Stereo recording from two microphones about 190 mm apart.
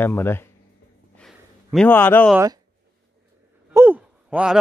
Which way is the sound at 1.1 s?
5° left (ahead or behind).